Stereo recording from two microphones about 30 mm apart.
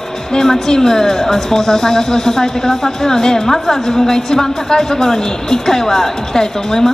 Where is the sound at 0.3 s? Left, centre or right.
Centre.